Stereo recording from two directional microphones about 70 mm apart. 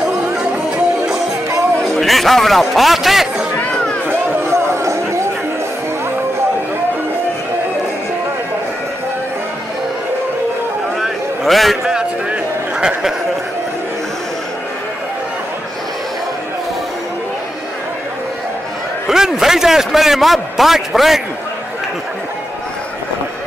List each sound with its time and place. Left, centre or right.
0.0 s music: centre
2.0 s a man's voice: centre
3.7 s run: centre
4.1 s a sound: right
11.0 s a sound: centre
19.0 s a man's voice: centre